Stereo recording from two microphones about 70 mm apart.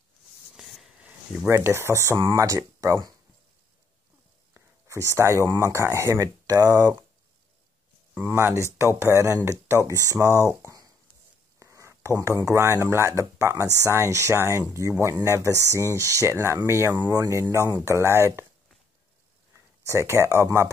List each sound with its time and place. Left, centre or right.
0.6 s a sound: centre
1.5 s speech: right
4.8 s speech: right
6.6 s speech: right
8.1 s speech: right
8.7 s speech: right
11.6 s a sound: right
12.5 s speech: right
19.8 s speech: right